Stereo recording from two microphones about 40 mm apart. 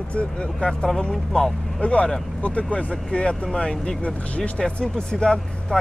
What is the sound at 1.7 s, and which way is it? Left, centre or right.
Speech, left.